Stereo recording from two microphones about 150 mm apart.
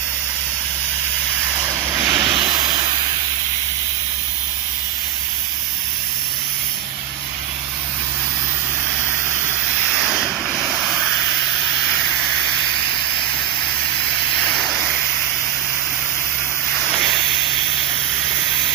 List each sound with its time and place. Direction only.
1.7 s vehicle: 20° right (ahead or behind)
9.8 s vehicle: 5° right (ahead or behind)
12.0 s steam: 5° left (ahead or behind)
14.4 s vehicle: 5° left (ahead or behind)